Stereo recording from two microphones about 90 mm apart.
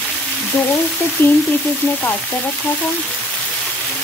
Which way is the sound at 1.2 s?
25° left (ahead or behind).